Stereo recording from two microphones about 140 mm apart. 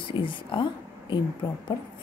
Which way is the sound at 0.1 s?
35° left (ahead or behind).